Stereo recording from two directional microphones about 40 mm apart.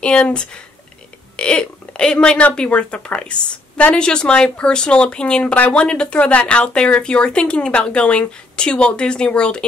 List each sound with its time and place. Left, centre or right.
0.0 s speech: left